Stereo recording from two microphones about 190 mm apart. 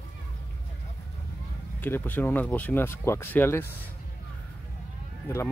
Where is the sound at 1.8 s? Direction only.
10° left (ahead or behind).